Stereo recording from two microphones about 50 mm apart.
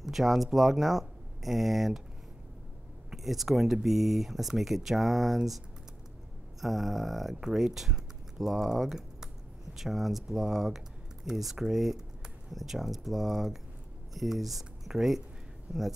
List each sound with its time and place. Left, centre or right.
0.0 s speech: centre
3.1 s speech: centre
6.6 s speech: centre